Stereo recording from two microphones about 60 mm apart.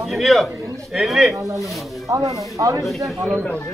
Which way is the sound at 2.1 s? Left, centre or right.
Right.